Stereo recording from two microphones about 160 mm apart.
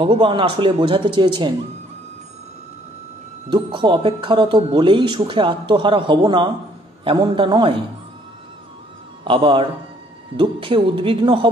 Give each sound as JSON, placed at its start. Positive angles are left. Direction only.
{"t": 0.0, "sound": "speech", "side_deg": -35}
{"t": 3.4, "sound": "speech", "side_deg": -30}
{"t": 9.2, "sound": "speech", "side_deg": -35}